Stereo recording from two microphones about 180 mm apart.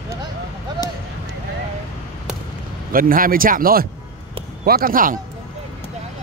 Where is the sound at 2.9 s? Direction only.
50° right (ahead or behind).